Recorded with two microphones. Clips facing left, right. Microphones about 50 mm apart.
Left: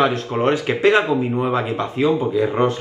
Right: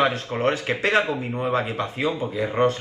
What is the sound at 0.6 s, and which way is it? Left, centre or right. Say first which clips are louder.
Speech: left 5 dB; left.